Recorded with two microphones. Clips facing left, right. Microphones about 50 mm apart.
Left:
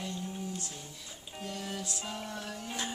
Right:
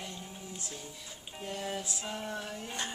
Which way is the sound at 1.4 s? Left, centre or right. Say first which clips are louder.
Right 2 dB; right.